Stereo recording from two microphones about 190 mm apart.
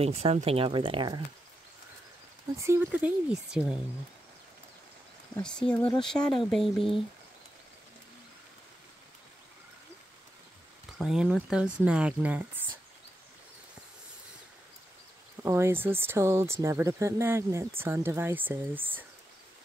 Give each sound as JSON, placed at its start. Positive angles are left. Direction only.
{"t": 0.0, "sound": "speech", "side_deg": -35}
{"t": 2.5, "sound": "speech", "side_deg": -15}
{"t": 5.4, "sound": "speech", "side_deg": 5}
{"t": 11.0, "sound": "speech", "side_deg": -5}
{"t": 15.4, "sound": "speech", "side_deg": -15}